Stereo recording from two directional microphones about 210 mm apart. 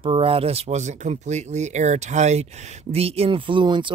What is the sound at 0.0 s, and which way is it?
Speech, 25° right (ahead or behind).